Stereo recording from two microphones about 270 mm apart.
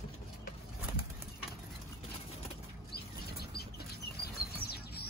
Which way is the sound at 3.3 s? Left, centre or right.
Left.